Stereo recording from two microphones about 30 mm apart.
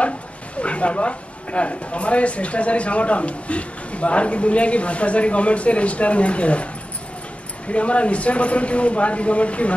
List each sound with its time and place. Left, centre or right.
0.6 s speech: left